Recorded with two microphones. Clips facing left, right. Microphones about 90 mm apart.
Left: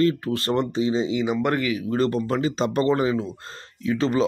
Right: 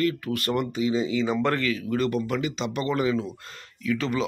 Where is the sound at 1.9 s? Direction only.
30° left (ahead or behind).